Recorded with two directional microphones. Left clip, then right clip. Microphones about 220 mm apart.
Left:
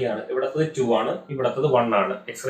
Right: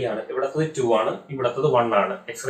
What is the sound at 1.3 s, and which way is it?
Speech, 10° left (ahead or behind).